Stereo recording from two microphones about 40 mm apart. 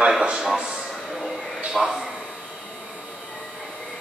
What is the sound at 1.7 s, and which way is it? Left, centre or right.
Speech, centre.